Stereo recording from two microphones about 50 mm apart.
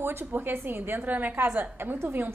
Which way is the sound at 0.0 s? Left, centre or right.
Right.